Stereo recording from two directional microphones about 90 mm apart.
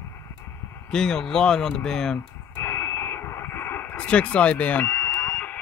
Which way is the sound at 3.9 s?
15° left (ahead or behind).